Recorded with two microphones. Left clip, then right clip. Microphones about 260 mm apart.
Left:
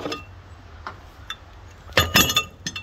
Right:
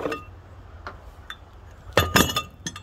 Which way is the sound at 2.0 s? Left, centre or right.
Right.